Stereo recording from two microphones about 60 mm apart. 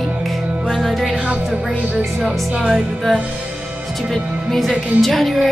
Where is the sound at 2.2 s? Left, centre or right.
Centre.